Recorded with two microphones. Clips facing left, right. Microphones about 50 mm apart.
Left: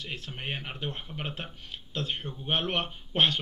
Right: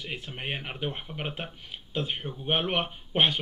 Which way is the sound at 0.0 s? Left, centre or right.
Centre.